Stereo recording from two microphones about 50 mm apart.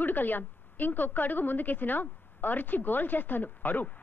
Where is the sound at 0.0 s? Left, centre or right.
Left.